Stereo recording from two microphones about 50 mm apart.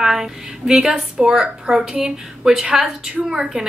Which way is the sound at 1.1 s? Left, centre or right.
Centre.